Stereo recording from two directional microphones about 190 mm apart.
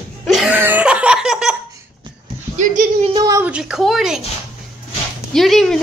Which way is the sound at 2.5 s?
40° right (ahead or behind).